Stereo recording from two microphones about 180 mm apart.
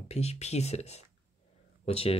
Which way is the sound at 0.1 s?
35° left (ahead or behind).